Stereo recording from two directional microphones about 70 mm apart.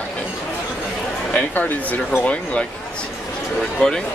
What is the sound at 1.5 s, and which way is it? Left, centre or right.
Speech, left.